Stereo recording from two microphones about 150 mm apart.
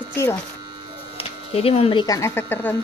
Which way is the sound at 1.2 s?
40° left (ahead or behind).